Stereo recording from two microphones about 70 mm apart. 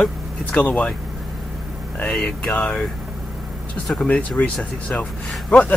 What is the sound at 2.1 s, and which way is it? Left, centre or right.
Speech, centre.